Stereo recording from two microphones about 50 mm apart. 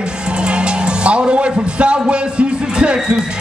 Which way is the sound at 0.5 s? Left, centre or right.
Right.